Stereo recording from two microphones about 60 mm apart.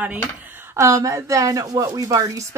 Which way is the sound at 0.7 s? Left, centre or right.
Right.